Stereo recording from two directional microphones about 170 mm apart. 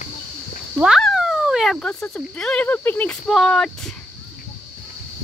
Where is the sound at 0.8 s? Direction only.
Centre (ahead or behind).